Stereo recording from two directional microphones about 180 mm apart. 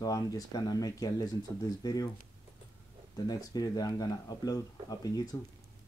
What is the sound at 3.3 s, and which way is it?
Speech, 20° left (ahead or behind).